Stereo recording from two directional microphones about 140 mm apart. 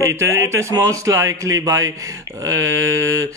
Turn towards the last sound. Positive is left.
turn(degrees=-20)  # may be behind; listen again after turning